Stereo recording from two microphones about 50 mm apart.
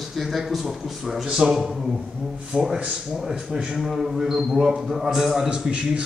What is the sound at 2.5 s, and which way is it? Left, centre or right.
Speech, right.